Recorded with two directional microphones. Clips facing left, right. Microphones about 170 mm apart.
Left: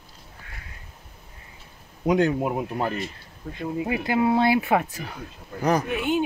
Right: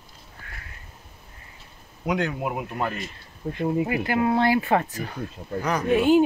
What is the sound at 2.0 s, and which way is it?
Speech, 30° left (ahead or behind).